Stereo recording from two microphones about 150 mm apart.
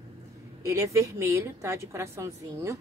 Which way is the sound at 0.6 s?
20° right (ahead or behind).